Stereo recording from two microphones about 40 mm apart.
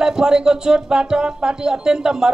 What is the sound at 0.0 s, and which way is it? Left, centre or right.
A man's voice, centre.